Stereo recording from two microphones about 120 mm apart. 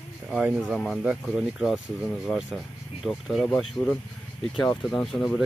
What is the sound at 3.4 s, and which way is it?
Speech, 10° left (ahead or behind).